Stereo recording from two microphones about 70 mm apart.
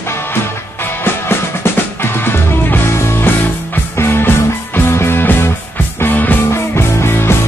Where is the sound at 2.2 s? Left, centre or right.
Left.